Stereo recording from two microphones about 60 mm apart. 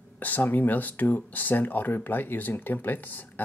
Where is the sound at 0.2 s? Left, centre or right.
Left.